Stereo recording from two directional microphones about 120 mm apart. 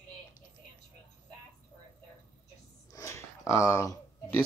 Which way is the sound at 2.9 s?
25° left (ahead or behind).